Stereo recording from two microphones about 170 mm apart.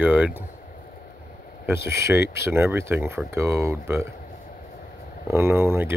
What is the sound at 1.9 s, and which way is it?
Speech, 15° right (ahead or behind).